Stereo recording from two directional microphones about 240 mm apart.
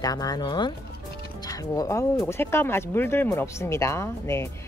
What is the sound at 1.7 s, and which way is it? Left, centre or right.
Speech, centre.